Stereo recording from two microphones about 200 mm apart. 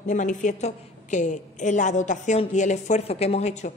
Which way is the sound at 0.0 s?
40° left (ahead or behind).